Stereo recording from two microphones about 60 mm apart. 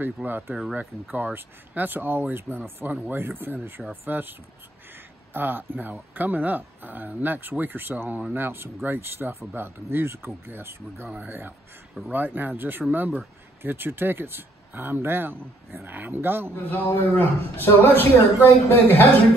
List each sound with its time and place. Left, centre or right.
0.0 s speech: right
11.1 s speech: right
16.7 s a man's voice: left